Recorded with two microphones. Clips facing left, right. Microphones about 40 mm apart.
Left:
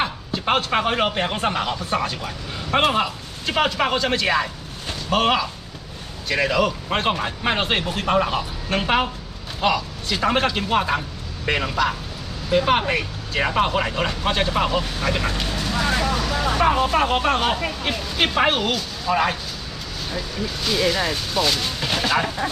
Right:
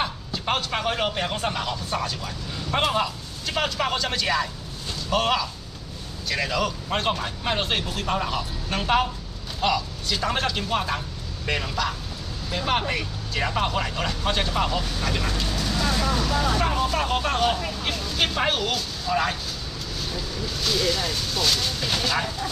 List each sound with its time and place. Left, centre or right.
0.0 s speech: left
4.8 s a sound: left
6.2 s a man's voice: left
20.6 s speech: left